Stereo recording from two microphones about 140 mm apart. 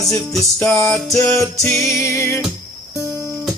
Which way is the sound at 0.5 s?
20° left (ahead or behind).